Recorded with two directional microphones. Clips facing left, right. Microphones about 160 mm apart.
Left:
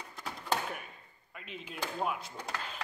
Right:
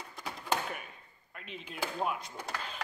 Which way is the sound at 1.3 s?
Centre (ahead or behind).